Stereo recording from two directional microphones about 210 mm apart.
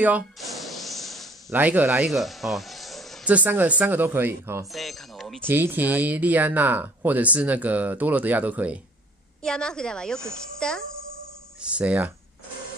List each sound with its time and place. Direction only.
0.0 s speech: 5° right (ahead or behind)
4.7 s a child's voice: centre (ahead or behind)
5.4 s speech: 10° right (ahead or behind)
9.4 s a child's voice: 5° left (ahead or behind)